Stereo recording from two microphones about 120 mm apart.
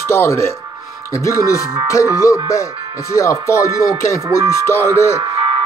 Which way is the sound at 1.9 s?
25° left (ahead or behind).